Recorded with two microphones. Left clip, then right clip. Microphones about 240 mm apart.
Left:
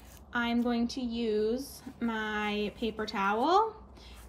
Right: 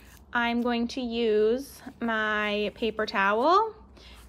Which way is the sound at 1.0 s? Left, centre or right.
Right.